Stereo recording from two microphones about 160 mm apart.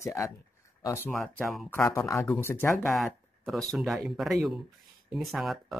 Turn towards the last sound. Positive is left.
turn(degrees=0)  # may be behind; listen again after turning